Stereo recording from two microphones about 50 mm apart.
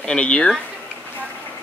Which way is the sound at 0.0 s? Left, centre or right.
Left.